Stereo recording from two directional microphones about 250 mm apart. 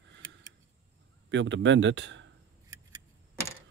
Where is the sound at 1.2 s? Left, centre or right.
Right.